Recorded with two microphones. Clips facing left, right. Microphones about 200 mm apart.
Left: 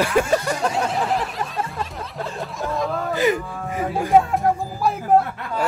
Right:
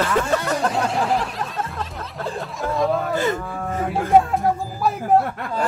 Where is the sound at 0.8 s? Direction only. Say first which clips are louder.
Right 1 dB; centre (ahead or behind).